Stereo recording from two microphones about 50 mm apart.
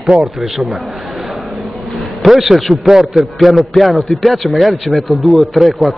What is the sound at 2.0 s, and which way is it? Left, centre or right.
A man's voice, centre.